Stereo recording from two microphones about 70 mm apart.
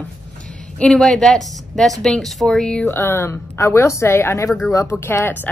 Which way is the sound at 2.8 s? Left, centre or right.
Left.